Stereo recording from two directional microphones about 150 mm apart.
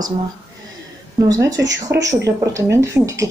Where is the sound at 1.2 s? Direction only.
25° right (ahead or behind).